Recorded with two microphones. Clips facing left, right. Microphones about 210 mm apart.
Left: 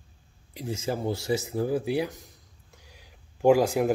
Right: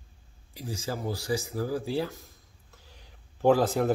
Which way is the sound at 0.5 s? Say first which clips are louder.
Left 4 dB; 20° left (ahead or behind).